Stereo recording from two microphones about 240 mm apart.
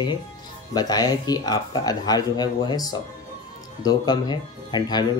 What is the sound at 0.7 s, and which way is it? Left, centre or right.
Speech, centre.